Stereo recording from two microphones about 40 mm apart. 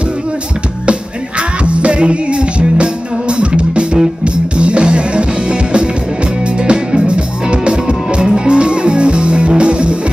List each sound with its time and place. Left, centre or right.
1.6 s music: right